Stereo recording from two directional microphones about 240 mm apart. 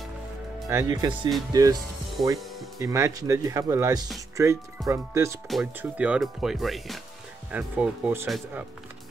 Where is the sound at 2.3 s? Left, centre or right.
Centre.